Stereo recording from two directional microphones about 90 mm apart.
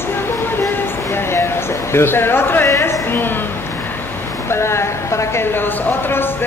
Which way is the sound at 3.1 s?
25° left (ahead or behind).